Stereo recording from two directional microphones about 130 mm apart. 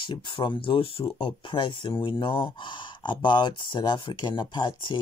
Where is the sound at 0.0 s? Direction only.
40° left (ahead or behind).